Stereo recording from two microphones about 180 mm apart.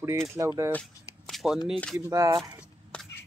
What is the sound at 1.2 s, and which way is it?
Shuffling cards, centre (ahead or behind).